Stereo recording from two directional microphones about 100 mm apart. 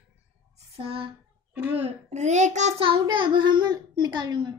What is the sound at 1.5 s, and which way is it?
Speech, 20° right (ahead or behind).